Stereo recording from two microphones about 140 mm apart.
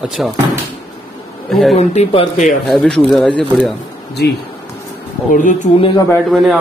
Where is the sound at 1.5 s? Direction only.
Centre (ahead or behind).